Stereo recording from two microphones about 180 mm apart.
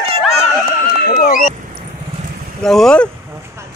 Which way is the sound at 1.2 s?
50° left (ahead or behind).